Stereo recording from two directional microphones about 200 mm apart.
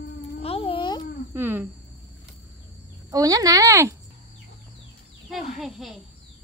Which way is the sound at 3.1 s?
15° right (ahead or behind).